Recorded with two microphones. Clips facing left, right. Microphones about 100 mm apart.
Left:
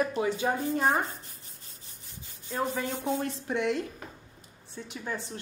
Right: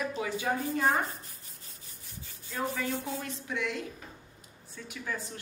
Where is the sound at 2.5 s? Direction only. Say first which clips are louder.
Left 2 dB; 20° left (ahead or behind).